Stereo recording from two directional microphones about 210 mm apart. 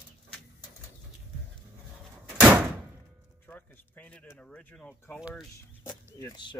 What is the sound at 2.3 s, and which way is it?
Door, 5° right (ahead or behind).